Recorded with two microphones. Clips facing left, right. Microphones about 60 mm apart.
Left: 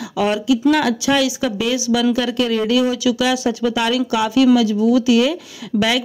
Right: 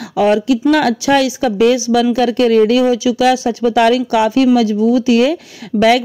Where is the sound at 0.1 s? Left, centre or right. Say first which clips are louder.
Right 5 dB; right.